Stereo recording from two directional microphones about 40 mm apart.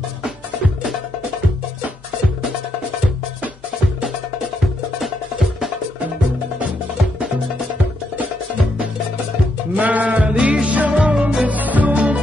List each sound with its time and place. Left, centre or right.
9.8 s music: right
11.4 s music: right